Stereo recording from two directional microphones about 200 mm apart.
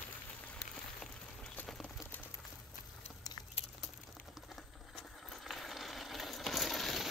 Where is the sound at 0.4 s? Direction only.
5° left (ahead or behind).